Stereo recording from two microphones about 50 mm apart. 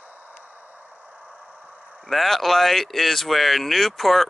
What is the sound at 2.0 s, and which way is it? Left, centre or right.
Speech, centre.